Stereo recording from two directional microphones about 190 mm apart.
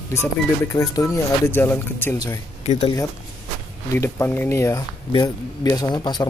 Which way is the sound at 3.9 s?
15° left (ahead or behind).